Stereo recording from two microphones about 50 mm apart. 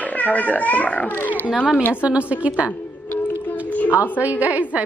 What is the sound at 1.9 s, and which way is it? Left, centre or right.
Speech, right.